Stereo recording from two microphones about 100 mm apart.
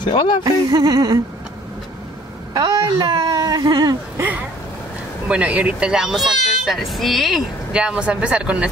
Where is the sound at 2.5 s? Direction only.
45° right (ahead or behind).